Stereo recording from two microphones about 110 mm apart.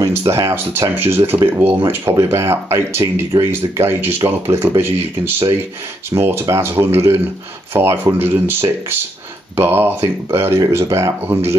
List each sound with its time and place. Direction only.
0.0 s speech: 30° right (ahead or behind)